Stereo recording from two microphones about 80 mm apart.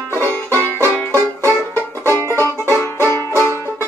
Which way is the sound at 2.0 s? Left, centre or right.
Right.